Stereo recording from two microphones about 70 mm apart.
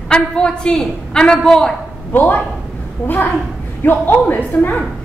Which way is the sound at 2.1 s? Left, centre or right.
Left.